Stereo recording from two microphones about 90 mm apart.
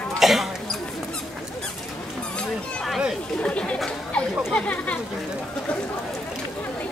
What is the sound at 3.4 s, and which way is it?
Chatter, 15° left (ahead or behind).